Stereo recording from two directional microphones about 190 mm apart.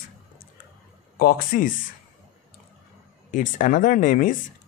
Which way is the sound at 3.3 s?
45° left (ahead or behind).